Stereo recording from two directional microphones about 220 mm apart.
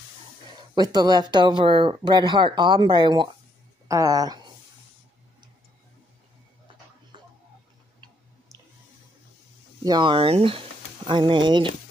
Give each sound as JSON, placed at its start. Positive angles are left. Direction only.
{"t": 0.7, "sound": "speech", "side_deg": -20}
{"t": 9.8, "sound": "speech", "side_deg": -20}